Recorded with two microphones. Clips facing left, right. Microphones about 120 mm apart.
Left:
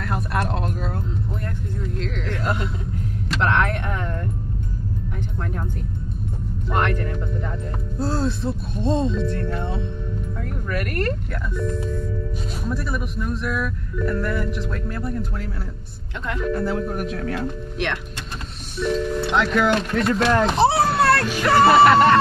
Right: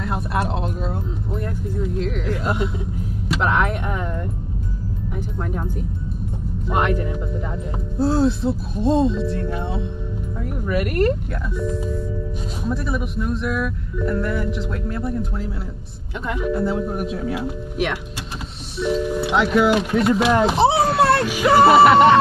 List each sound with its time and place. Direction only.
0.0 s a sound: 5° right (ahead or behind)
1.8 s music: 5° right (ahead or behind)
3.3 s a sound: 5° right (ahead or behind)
5.5 s music: 10° right (ahead or behind)
10.4 s speech: 10° right (ahead or behind)
21.0 s music: 20° right (ahead or behind)
21.3 s music: 10° right (ahead or behind)